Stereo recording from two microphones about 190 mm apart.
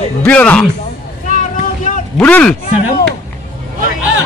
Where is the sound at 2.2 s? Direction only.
5° left (ahead or behind).